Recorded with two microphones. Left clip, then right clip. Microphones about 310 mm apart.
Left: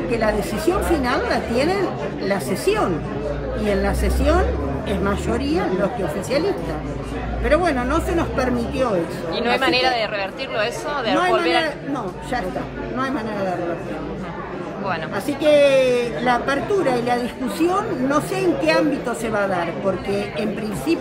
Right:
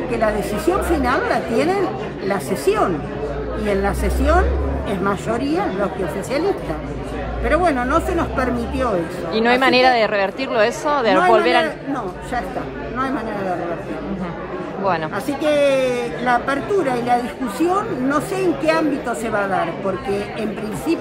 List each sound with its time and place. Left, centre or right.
0.9 s speech: centre
7.4 s speech: centre
9.3 s speech: right
15.5 s speech: centre